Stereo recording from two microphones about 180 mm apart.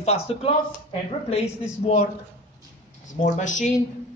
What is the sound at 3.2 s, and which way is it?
Speech, 45° left (ahead or behind).